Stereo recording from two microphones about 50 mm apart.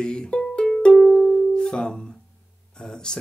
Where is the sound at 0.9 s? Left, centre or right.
Centre.